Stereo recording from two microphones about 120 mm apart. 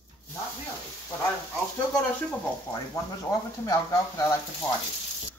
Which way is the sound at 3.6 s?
30° left (ahead or behind).